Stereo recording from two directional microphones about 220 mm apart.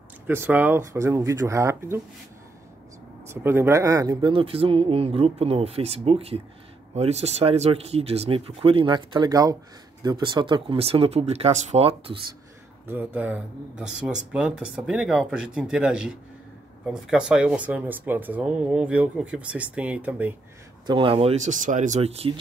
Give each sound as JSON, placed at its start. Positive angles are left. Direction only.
{"t": 0.3, "sound": "speech", "side_deg": -10}
{"t": 3.3, "sound": "speech", "side_deg": -10}
{"t": 12.8, "sound": "speech", "side_deg": -10}
{"t": 20.8, "sound": "speech", "side_deg": -20}